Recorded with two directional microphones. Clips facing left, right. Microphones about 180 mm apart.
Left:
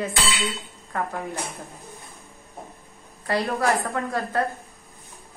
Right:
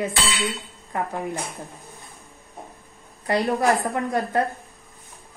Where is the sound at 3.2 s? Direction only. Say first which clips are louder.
Right 3 dB; 15° right (ahead or behind).